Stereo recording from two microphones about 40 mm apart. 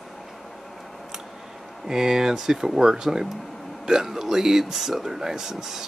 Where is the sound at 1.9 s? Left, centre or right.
Centre.